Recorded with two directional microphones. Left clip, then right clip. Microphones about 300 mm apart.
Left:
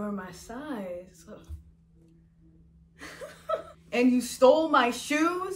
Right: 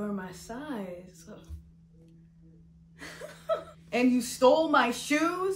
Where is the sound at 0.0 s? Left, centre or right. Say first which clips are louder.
Even; centre.